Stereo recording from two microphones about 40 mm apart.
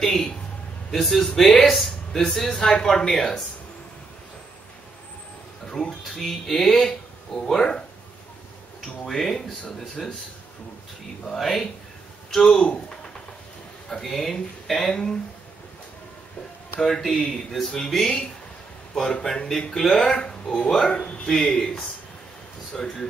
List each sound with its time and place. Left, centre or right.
0.0 s a sound: centre
0.9 s speech: centre
1.8 s a sound: centre
2.3 s speech: centre
5.7 s speech: centre
8.8 s speech: centre
11.3 s speech: centre
12.4 s speech: centre
14.0 s speech: centre
16.8 s speech: centre
19.2 s speech: centre
21.3 s speech: centre
22.8 s speech: centre